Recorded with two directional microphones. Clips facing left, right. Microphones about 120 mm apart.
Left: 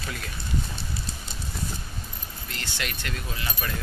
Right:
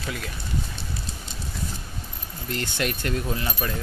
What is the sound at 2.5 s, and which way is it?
Speech, 45° right (ahead or behind).